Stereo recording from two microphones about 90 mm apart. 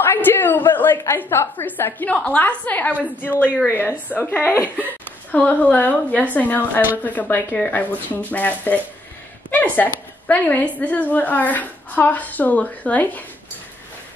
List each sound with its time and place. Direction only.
0.0 s a woman's voice: 25° left (ahead or behind)